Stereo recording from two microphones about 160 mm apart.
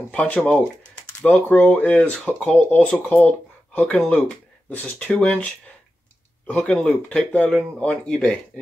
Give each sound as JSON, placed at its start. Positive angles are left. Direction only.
{"t": 0.1, "sound": "speech", "side_deg": 10}